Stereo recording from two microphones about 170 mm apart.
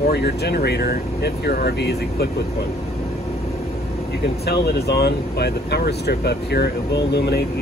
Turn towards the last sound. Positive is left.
turn(degrees=70)  # may be behind; listen again after turning